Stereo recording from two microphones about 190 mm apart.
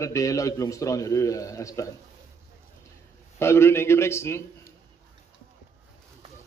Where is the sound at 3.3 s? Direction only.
15° left (ahead or behind).